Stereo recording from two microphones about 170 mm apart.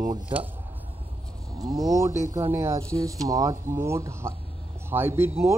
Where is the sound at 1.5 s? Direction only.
20° right (ahead or behind).